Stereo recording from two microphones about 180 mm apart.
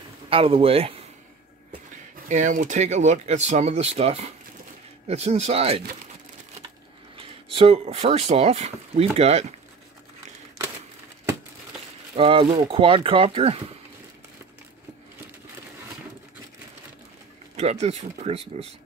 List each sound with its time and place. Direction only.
0.3 s speech: 30° right (ahead or behind)
2.2 s speech: 45° right (ahead or behind)
7.5 s speech: 35° right (ahead or behind)
12.2 s speech: 30° right (ahead or behind)
17.6 s speech: 35° right (ahead or behind)